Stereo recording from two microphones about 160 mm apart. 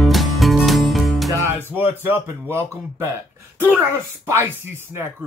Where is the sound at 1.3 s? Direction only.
15° right (ahead or behind).